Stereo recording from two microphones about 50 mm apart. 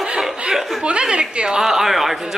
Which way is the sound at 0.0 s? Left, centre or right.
Centre.